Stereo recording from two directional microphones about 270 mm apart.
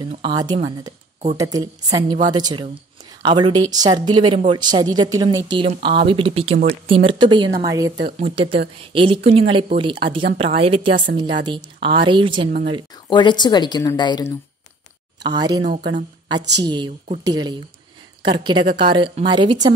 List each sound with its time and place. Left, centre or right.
0.0 s a woman's voice: centre
12.9 s a woman's voice: centre
15.2 s speech: centre